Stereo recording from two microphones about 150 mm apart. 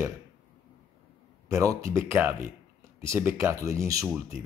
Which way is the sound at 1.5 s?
20° right (ahead or behind).